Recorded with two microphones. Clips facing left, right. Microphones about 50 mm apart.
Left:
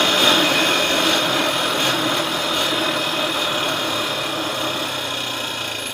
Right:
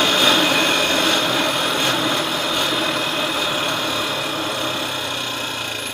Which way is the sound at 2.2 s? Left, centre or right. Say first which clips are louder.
Even; right.